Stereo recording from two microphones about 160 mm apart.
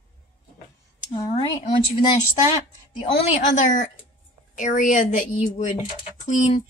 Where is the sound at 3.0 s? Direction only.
40° left (ahead or behind).